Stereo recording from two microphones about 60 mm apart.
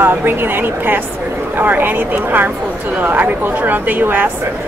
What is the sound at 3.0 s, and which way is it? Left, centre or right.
Speech, right.